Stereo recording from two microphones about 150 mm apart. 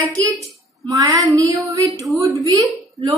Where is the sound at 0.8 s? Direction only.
25° right (ahead or behind).